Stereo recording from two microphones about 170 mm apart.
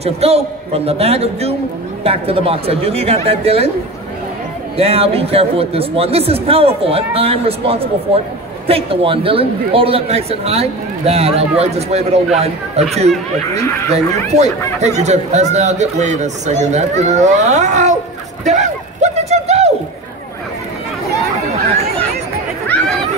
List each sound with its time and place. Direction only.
0.0 s a man's voice: 35° right (ahead or behind)
4.7 s a man's voice: 35° right (ahead or behind)
13.9 s speech: 40° right (ahead or behind)
18.4 s clip-clop: 45° right (ahead or behind)